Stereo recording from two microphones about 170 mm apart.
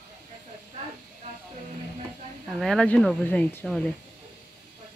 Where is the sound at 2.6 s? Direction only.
5° left (ahead or behind).